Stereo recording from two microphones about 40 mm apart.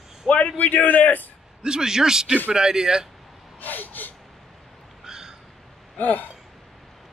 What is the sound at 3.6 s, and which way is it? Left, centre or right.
Speech, left.